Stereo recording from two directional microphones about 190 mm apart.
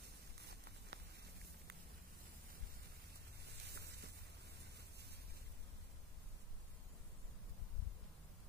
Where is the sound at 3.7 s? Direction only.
55° right (ahead or behind).